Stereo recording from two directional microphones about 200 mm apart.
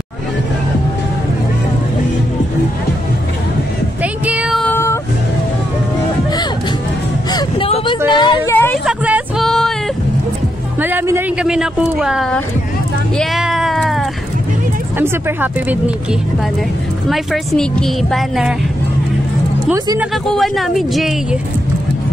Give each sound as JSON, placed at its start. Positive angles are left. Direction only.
{"t": 4.0, "sound": "child singing", "side_deg": -5}
{"t": 7.2, "sound": "a sound", "side_deg": 20}
{"t": 8.8, "sound": "music", "side_deg": -5}
{"t": 10.8, "sound": "a sound", "side_deg": -10}
{"t": 15.0, "sound": "speech", "side_deg": -10}
{"t": 19.7, "sound": "speech", "side_deg": -15}
{"t": 20.2, "sound": "speech", "side_deg": 0}